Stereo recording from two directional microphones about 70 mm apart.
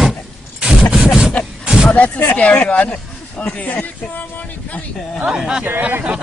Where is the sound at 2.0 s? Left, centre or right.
Left.